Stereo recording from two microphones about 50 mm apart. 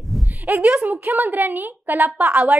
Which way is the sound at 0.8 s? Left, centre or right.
Right.